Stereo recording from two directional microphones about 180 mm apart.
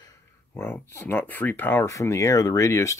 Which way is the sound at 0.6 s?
10° left (ahead or behind).